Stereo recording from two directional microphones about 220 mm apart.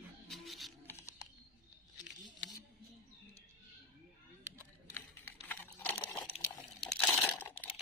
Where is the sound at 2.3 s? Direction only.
15° left (ahead or behind).